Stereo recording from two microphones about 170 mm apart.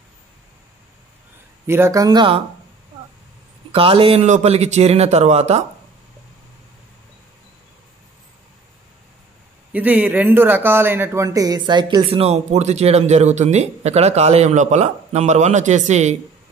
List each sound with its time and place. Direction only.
1.7 s speech: 15° right (ahead or behind)
3.7 s speech: 30° right (ahead or behind)
9.7 s speech: 10° right (ahead or behind); by 16.2 s 40° right (ahead or behind)